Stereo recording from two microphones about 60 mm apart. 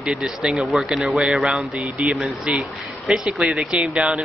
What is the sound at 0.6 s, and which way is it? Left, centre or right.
Speech, centre.